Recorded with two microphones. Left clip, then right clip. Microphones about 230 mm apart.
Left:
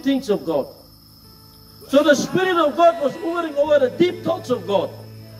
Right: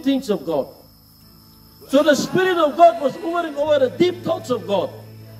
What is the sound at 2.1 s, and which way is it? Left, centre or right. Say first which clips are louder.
Speech: right 1 dB; centre.